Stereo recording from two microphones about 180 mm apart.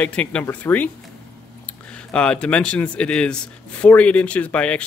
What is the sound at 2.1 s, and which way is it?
Speech, 5° left (ahead or behind).